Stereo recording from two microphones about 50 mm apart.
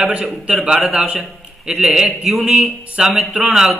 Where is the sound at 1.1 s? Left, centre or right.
Centre.